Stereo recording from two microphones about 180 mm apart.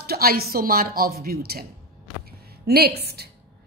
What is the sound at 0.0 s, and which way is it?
A woman's voice, 60° right (ahead or behind).